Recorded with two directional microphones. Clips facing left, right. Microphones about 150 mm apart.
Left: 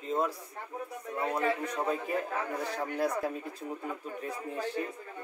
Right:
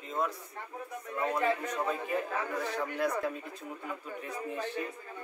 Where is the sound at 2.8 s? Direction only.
35° left (ahead or behind).